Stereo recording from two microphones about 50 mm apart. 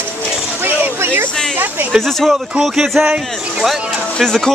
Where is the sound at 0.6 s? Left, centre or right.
Right.